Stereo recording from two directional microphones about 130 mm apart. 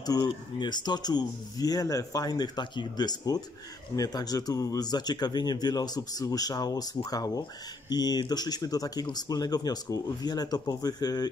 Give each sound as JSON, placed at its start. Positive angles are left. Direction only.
{"t": 0.0, "sound": "speech", "side_deg": 35}